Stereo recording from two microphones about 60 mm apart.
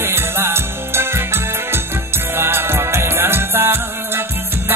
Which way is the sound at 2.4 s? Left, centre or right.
Right.